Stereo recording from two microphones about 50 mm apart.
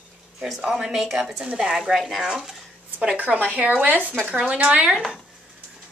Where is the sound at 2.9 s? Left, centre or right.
Right.